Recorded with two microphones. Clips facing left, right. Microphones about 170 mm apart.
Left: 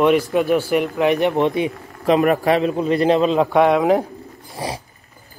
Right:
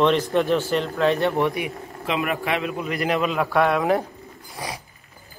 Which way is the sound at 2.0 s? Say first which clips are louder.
Left 10 dB; 40° left (ahead or behind).